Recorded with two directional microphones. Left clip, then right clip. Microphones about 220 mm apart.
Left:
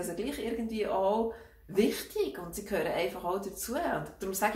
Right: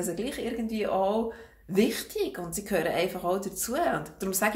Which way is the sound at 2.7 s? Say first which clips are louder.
Right 4 dB; 45° right (ahead or behind).